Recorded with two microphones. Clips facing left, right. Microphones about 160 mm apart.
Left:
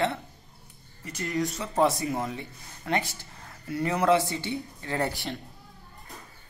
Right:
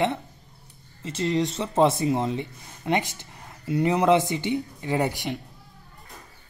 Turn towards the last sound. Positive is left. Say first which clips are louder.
# right 4 dB
turn(degrees=-15)  # may be behind; listen again after turning